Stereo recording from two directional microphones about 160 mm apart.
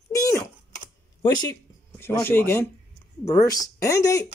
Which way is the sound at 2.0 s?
15° left (ahead or behind).